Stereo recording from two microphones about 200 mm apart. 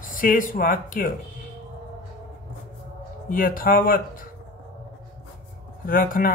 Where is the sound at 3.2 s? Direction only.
45° left (ahead or behind).